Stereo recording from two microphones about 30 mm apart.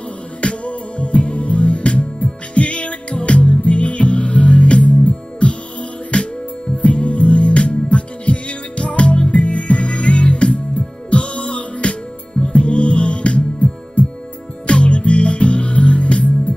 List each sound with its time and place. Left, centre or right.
0.4 s music: left
14.7 s music: left